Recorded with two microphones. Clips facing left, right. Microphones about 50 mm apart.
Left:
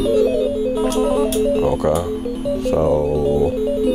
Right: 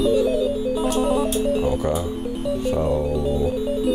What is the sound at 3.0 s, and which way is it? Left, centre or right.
Music, left.